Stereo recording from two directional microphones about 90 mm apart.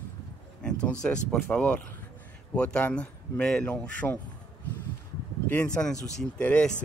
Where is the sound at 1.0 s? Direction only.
10° left (ahead or behind).